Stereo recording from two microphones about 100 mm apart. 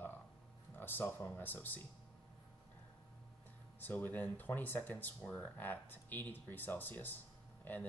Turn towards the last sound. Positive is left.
turn(degrees=20)  # may be behind; listen again after turning